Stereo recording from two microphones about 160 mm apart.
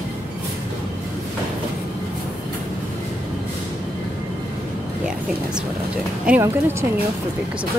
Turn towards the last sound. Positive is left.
turn(degrees=-10)  # may be behind; listen again after turning